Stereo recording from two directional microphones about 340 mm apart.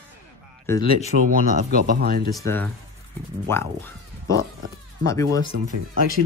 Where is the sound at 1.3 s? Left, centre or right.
Right.